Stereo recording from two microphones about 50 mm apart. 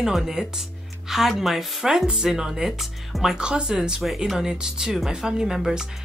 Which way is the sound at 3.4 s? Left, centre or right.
Centre.